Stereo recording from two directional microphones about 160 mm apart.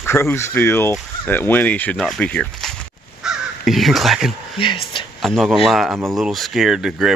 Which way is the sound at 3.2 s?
Centre (ahead or behind).